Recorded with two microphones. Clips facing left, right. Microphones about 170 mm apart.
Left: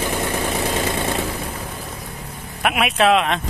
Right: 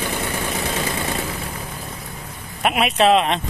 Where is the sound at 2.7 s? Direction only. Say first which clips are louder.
Right 1 dB; 35° right (ahead or behind).